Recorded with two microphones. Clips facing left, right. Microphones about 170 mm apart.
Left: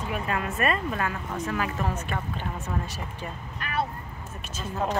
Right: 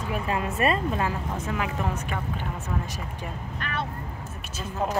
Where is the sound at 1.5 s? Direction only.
15° right (ahead or behind).